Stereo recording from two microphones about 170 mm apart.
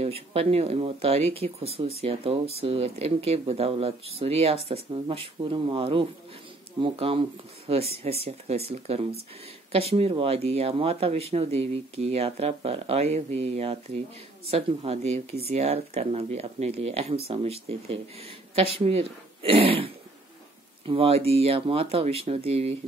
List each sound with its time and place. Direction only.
0.0 s speech: 35° right (ahead or behind)